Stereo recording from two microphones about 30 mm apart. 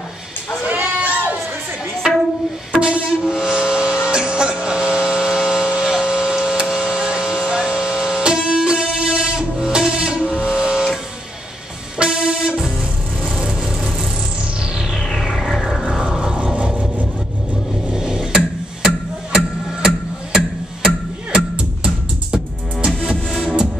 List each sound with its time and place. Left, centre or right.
0.7 s sheep: right
2.0 s music: centre
2.7 s train: right
3.3 s a sound: right
12.0 s music: right
13.5 s vehicle: right
15.0 s music: centre
16.0 s music: right
16.5 s vehicle: right
17.9 s music: right
21.3 s music: right
23.0 s music: centre